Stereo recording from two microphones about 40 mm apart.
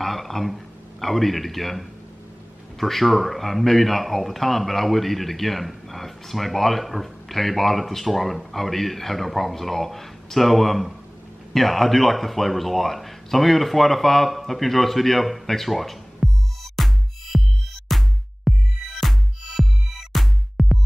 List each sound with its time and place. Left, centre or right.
0.0 s speech: centre
16.7 s music: centre